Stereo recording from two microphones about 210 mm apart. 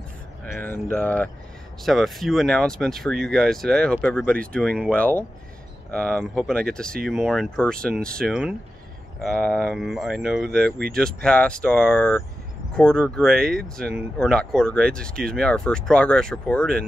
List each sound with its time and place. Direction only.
0.6 s speech: 10° left (ahead or behind)
10.4 s speech: 45° right (ahead or behind)
11.2 s speech: 5° left (ahead or behind)
13.3 s speech: 45° right (ahead or behind)
14.1 s speech: 5° left (ahead or behind)